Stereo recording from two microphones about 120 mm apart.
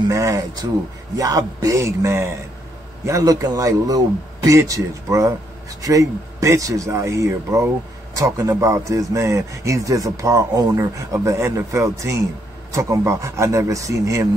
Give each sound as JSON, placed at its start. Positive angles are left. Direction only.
{"t": 0.1, "sound": "speech", "side_deg": -25}